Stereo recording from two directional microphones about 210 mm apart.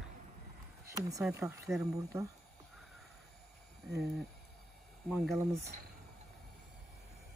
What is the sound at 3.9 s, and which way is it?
Speech, 50° right (ahead or behind).